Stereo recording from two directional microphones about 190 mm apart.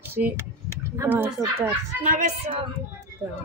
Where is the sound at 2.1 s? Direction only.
35° right (ahead or behind).